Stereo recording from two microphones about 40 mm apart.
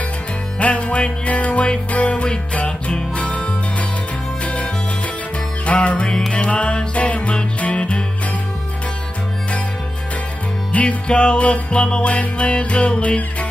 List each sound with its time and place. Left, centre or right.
0.6 s music: left
5.7 s music: left
10.7 s music: left